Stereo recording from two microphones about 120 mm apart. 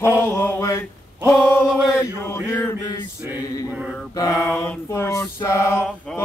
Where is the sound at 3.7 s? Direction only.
10° right (ahead or behind).